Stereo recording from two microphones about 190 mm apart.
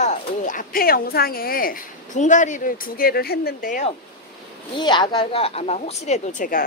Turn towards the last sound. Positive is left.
turn(degrees=45)  # may be behind; listen again after turning